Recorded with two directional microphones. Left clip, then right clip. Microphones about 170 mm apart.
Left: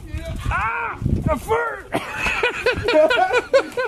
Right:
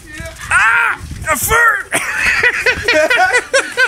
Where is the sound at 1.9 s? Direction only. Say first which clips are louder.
Right 8 dB; 15° left (ahead or behind).